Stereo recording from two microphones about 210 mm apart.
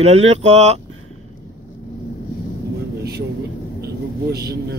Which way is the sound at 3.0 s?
50° right (ahead or behind).